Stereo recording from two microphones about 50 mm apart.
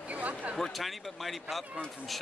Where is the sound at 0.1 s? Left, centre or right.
Right.